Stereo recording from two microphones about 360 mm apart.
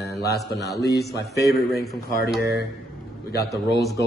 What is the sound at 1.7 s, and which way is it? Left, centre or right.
Speech, centre.